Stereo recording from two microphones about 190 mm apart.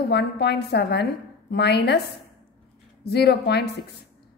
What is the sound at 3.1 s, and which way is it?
Speech, 60° left (ahead or behind).